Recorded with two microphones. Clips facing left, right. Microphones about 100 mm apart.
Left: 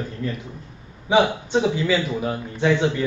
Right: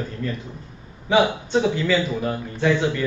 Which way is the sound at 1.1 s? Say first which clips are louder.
Even; 15° left (ahead or behind).